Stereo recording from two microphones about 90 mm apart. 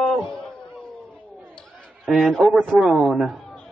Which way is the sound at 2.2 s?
Centre (ahead or behind).